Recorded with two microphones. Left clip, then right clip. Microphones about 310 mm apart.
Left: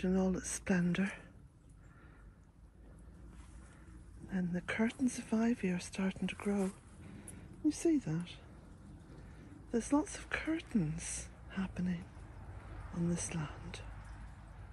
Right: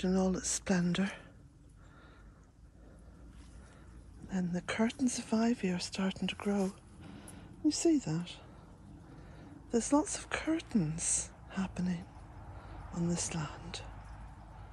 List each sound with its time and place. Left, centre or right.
0.0 s speech: centre
4.3 s speech: centre
9.7 s speech: centre